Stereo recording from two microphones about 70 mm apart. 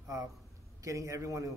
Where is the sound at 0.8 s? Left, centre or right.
Right.